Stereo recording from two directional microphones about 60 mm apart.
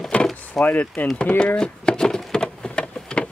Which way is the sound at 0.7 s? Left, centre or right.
Left.